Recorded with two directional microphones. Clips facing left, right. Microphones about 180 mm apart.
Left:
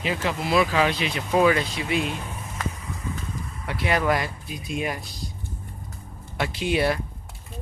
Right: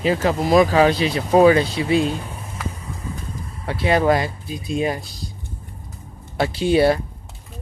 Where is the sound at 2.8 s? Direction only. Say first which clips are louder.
Right 1 dB; 30° right (ahead or behind).